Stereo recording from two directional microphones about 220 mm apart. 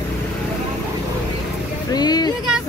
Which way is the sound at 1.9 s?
20° left (ahead or behind).